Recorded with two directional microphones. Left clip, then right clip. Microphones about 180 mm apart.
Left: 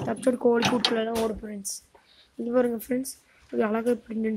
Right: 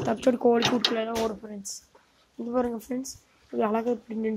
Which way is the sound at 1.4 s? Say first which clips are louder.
Left 2 dB; 25° left (ahead or behind).